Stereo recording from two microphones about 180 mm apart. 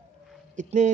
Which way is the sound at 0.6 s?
45° right (ahead or behind).